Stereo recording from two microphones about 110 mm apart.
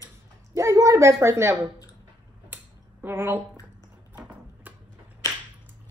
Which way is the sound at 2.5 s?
15° right (ahead or behind).